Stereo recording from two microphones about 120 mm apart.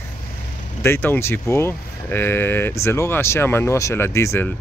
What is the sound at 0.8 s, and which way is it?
Speech, 15° left (ahead or behind).